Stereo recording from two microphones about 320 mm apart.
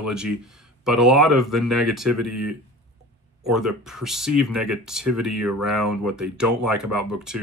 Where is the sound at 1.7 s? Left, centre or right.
Right.